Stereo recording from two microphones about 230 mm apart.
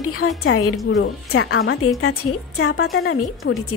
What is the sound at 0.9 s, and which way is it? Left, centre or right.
Speech, left.